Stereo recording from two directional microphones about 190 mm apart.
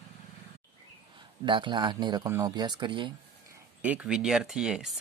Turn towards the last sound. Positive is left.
turn(degrees=-5)  # may be behind; listen again after turning